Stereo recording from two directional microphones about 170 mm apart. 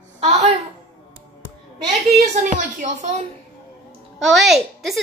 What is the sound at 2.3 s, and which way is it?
Speech, 45° right (ahead or behind).